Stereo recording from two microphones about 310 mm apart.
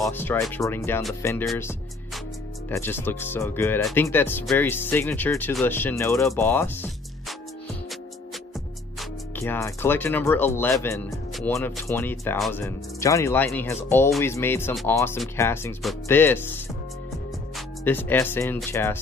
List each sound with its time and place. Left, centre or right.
0.0 s speech: centre
2.7 s speech: centre
9.3 s speech: centre
17.6 s speech: centre